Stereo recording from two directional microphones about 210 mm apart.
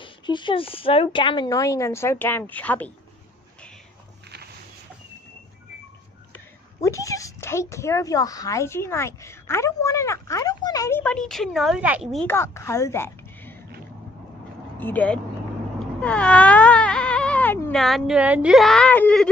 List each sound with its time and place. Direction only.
0.0 s a woman's voice: 25° left (ahead or behind); by 2.9 s 10° left (ahead or behind)
6.8 s a woman's voice: 15° left (ahead or behind); by 12.2 s 5° right (ahead or behind)
12.3 s a woman's voice: 10° left (ahead or behind)
14.8 s a woman's voice: 10° left (ahead or behind)